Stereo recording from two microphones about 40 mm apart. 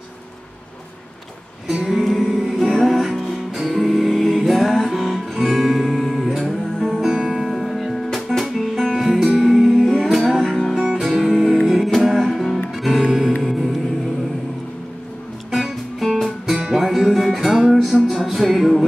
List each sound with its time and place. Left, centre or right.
2.0 s music: centre
13.4 s music: centre
15.5 s music: centre
16.5 s music: centre
16.8 s music: centre